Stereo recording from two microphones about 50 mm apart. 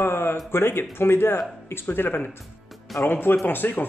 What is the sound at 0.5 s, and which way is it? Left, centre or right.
Speech, left.